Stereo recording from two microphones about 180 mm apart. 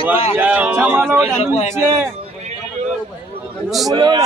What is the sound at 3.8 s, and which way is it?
Speech, 20° right (ahead or behind).